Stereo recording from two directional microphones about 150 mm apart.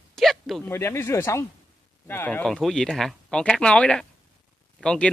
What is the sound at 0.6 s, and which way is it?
Speech, 15° left (ahead or behind).